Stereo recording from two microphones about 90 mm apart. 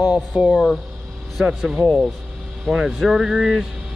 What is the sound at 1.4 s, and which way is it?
Speech, 5° right (ahead or behind).